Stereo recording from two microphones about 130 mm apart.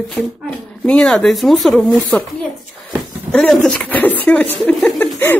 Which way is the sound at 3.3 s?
5° left (ahead or behind).